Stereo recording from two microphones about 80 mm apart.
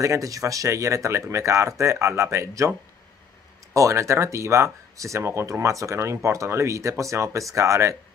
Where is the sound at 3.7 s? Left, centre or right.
Right.